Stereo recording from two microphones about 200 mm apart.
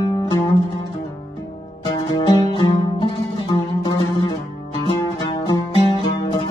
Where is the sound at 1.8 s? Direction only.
20° left (ahead or behind).